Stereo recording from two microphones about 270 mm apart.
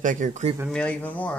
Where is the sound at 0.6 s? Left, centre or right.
Centre.